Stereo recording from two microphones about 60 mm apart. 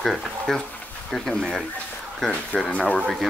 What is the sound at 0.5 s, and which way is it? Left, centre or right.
Speech, centre.